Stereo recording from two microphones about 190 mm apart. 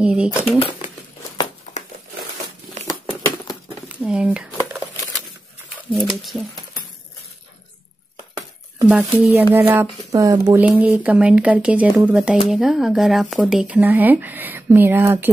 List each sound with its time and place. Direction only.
0.0 s speech: 5° right (ahead or behind)
0.4 s speech: 30° left (ahead or behind)
3.9 s speech: 5° right (ahead or behind)
5.9 s speech: centre (ahead or behind)
8.8 s speech: 10° right (ahead or behind)